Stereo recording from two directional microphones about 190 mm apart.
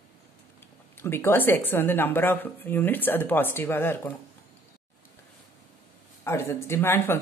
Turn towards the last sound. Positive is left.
turn(degrees=10)  # may be behind; listen again after turning